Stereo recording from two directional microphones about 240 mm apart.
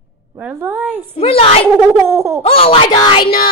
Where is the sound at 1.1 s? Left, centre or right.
Left.